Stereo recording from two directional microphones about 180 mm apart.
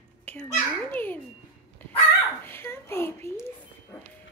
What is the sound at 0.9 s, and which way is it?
Speech, 10° left (ahead or behind).